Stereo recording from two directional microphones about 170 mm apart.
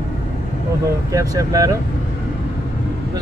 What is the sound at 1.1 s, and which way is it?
Speech, 20° right (ahead or behind).